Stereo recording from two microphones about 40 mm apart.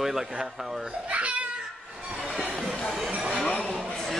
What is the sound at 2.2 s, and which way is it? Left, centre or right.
Music, centre.